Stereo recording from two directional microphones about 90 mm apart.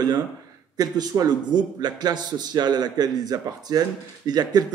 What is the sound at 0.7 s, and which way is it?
A man's voice, 45° right (ahead or behind).